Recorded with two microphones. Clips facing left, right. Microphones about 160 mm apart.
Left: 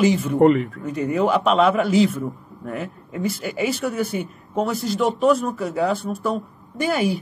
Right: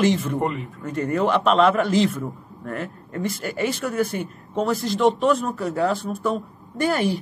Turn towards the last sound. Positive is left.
turn(degrees=0)  # may be behind; listen again after turning